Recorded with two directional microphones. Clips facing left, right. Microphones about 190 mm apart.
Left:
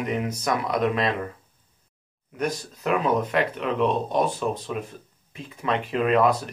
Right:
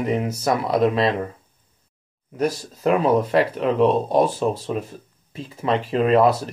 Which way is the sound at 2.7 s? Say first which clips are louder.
Right 5 dB; 35° right (ahead or behind).